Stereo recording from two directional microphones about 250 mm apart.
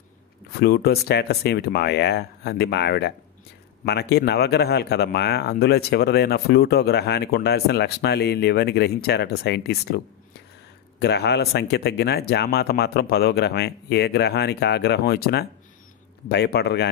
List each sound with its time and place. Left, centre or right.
0.5 s speech: left
11.0 s speech: left